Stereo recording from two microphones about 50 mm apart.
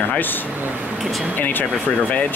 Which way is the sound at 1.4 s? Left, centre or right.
Left.